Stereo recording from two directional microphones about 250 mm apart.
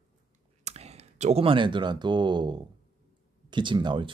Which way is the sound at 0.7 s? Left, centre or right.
Right.